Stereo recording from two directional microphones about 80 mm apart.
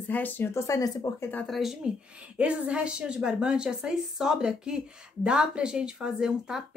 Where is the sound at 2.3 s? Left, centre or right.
Centre.